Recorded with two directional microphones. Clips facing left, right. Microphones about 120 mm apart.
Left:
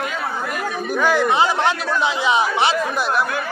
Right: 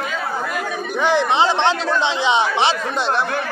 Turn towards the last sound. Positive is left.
turn(degrees=-30)  # may be behind; listen again after turning